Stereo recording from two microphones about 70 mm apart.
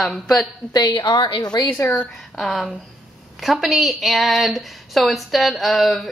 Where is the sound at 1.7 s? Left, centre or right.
Left.